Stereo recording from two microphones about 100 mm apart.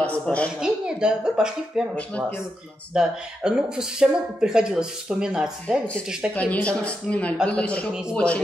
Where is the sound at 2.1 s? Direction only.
15° left (ahead or behind).